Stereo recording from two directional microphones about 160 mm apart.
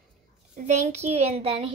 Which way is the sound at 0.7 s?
45° right (ahead or behind).